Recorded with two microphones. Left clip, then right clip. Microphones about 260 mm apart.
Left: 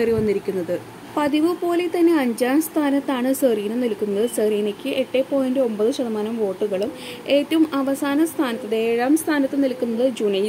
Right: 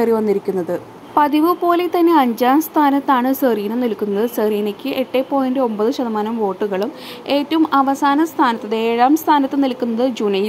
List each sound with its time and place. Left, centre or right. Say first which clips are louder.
0.0 s a woman's voice: right 4 dB; centre